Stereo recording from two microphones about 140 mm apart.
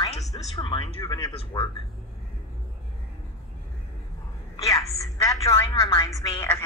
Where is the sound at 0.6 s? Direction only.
35° left (ahead or behind).